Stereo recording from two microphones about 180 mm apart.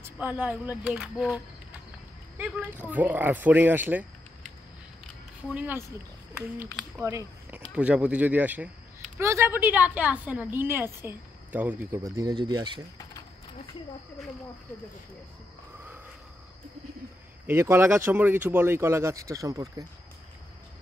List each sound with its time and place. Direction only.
0.0 s speech: 10° right (ahead or behind)
5.5 s speech: 10° right (ahead or behind)
7.0 s speech: 15° right (ahead or behind)
17.5 s speech: 15° right (ahead or behind)